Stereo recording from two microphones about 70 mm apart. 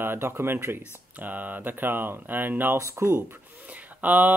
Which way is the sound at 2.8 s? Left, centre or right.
Right.